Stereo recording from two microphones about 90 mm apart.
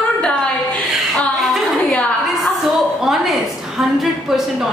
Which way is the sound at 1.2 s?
5° left (ahead or behind).